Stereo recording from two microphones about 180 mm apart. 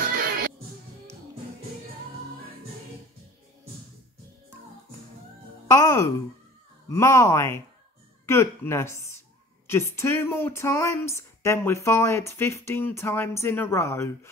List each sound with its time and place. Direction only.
5.7 s music: 15° left (ahead or behind)
6.9 s speech: 15° left (ahead or behind)